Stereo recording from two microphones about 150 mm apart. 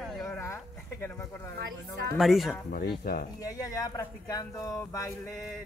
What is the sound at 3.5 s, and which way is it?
Speech, 20° left (ahead or behind).